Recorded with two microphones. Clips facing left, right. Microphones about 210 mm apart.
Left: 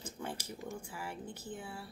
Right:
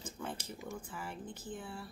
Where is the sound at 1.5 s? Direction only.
5° left (ahead or behind).